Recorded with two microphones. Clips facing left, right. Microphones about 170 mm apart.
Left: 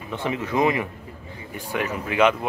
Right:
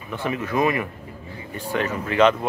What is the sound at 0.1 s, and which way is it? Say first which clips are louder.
Speech: even; 20° left (ahead or behind).